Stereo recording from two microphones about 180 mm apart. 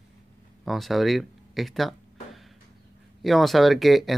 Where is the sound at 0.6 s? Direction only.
Centre (ahead or behind).